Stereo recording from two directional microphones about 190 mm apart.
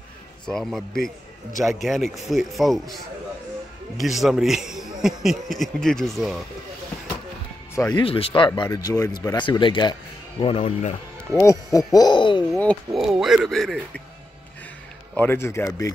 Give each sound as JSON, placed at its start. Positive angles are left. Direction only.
{"t": 0.5, "sound": "a man's voice", "side_deg": 0}
{"t": 4.0, "sound": "a man's voice", "side_deg": 0}
{"t": 7.7, "sound": "speech", "side_deg": 15}
{"t": 8.0, "sound": "speech", "side_deg": 30}
{"t": 11.3, "sound": "a man's voice", "side_deg": 15}
{"t": 12.5, "sound": "speech", "side_deg": 5}
{"t": 15.1, "sound": "a man's voice", "side_deg": 10}